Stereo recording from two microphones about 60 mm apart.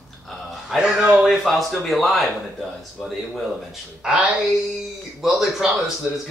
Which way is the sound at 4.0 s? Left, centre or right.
Centre.